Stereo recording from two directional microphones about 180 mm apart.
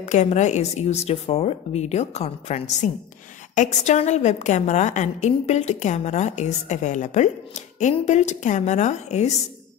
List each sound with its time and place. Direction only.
0.0 s a woman's voice: 40° left (ahead or behind)